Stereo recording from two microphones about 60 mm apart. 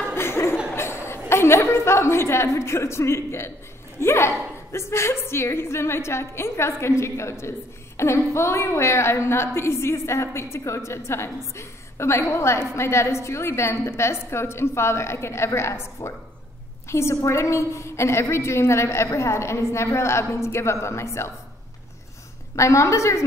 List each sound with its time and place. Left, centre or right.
0.1 s a sound: left
0.7 s a woman's voice: left
22.6 s a woman's voice: left